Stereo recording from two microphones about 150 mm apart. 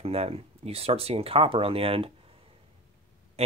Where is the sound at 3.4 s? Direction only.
45° right (ahead or behind).